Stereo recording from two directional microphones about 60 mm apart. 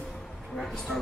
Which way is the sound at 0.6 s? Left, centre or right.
Centre.